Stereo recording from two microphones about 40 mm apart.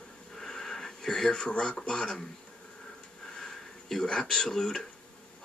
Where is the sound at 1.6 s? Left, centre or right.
Centre.